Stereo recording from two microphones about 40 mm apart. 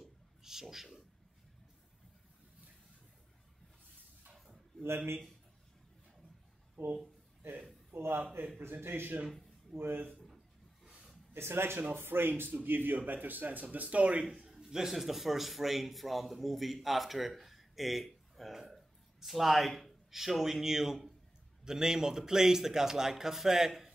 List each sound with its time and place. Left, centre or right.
0.4 s a sound: centre
4.8 s speech: right
8.8 s a man's voice: right
11.3 s speech: right
11.9 s a man's voice: right
14.6 s a man's voice: centre